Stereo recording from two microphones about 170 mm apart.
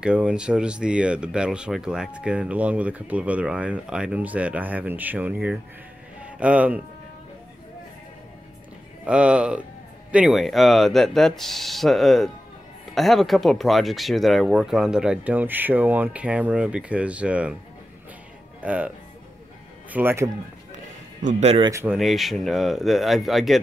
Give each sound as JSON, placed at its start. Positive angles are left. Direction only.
{"t": 0.0, "sound": "speech", "side_deg": -5}
{"t": 9.0, "sound": "speech", "side_deg": -5}
{"t": 18.6, "sound": "speech", "side_deg": -10}
{"t": 19.9, "sound": "speech", "side_deg": -10}
{"t": 21.2, "sound": "a man's voice", "side_deg": -45}
{"t": 21.8, "sound": "speech", "side_deg": 0}